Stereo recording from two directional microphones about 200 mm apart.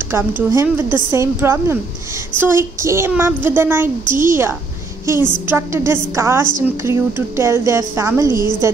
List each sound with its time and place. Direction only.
0.1 s speech: 10° right (ahead or behind)